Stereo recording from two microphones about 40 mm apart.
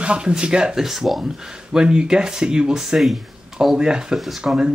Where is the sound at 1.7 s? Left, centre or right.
Centre.